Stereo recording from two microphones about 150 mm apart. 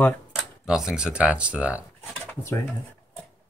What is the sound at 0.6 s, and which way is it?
Speech, 5° right (ahead or behind).